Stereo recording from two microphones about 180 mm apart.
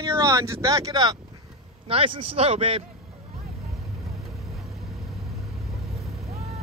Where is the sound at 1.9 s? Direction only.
30° right (ahead or behind).